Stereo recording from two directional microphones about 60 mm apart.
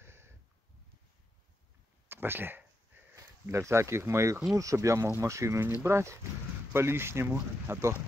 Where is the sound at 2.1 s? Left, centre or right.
Right.